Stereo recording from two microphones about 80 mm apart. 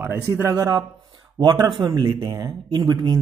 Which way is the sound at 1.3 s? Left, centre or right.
Right.